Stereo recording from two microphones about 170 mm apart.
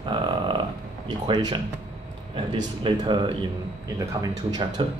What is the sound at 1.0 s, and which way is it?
Speech, 25° right (ahead or behind).